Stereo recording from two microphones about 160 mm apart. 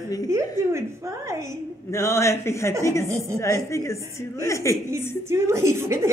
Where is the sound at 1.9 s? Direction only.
15° left (ahead or behind).